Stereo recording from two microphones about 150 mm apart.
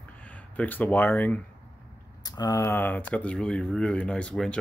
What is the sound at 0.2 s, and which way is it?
Speech, 10° left (ahead or behind).